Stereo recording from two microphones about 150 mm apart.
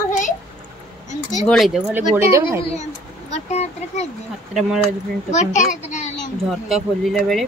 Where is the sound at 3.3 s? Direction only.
45° left (ahead or behind).